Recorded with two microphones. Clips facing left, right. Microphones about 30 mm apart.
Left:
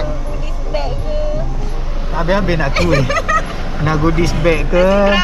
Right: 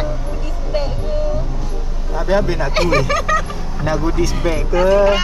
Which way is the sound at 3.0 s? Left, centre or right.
Centre.